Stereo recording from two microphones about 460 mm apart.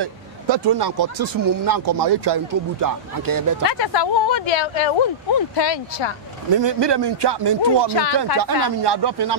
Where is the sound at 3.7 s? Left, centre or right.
Left.